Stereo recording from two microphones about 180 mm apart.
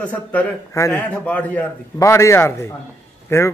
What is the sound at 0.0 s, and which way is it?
A man's voice, 10° left (ahead or behind).